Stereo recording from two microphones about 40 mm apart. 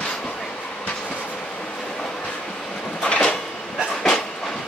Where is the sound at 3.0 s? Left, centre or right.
Left.